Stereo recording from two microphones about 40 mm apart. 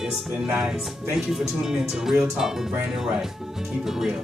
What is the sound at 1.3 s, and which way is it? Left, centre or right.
Speech, centre.